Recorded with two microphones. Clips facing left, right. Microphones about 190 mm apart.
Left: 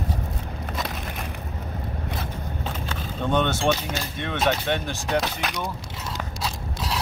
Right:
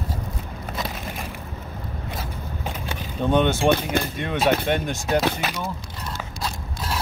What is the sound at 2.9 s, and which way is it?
Vehicle, 10° right (ahead or behind).